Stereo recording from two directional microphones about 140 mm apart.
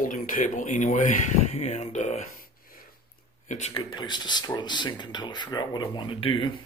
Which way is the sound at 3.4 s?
60° left (ahead or behind).